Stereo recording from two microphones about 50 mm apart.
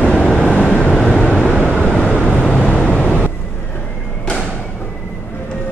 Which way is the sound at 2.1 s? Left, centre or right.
Left.